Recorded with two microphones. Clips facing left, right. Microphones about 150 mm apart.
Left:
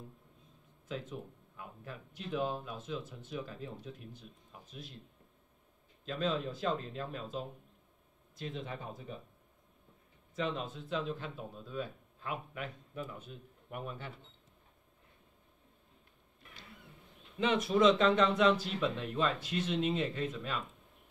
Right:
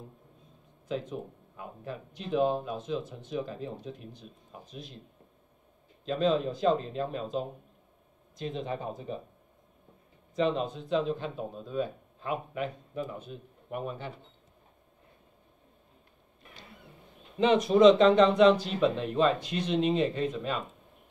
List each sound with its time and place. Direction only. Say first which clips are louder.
1.0 s speech: right 6 dB; 30° right (ahead or behind)
6.0 s speech: right 8 dB; 25° right (ahead or behind)
10.3 s speech: right 8 dB; 25° right (ahead or behind)
16.4 s a sound: right 4 dB; 25° right (ahead or behind)
17.6 s speech: right 8 dB; 20° right (ahead or behind)